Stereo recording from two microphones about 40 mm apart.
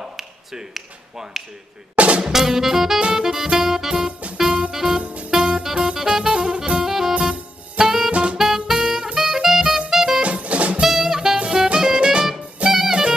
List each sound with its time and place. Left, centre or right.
0.2 s tap: centre
2.0 s music: right
2.3 s music: centre
5.0 s music: right
5.3 s music: centre
6.8 s music: centre
7.8 s saxophone: centre
8.1 s music: right
8.4 s music: centre
10.2 s music: right
10.8 s music: centre
11.3 s music: right
12.6 s music: centre